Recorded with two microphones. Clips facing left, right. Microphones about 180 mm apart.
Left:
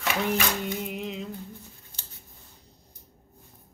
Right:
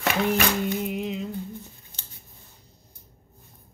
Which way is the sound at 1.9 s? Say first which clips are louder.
Right 1 dB; 20° right (ahead or behind).